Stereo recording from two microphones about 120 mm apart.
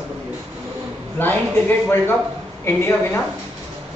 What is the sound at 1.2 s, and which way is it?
A man's voice, 15° left (ahead or behind).